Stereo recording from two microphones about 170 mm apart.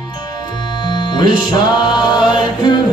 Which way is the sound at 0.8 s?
25° left (ahead or behind).